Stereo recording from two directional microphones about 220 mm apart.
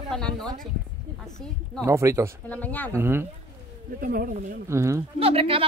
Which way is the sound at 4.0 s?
40° right (ahead or behind).